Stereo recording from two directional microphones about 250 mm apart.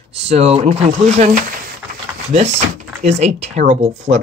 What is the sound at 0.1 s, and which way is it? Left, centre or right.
Speech, right.